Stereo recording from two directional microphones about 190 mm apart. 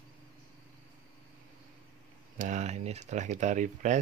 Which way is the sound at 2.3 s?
40° right (ahead or behind).